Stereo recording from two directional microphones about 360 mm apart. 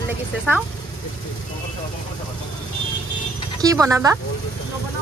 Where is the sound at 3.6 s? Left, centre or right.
Centre.